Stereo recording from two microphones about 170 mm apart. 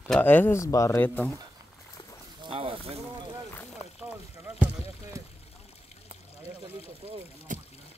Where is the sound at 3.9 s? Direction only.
5° right (ahead or behind).